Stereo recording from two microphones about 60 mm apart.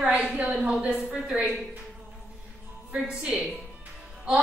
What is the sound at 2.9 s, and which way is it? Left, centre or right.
Speech, centre.